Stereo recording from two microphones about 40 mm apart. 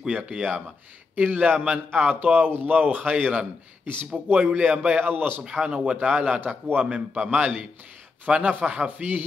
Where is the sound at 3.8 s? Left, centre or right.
Right.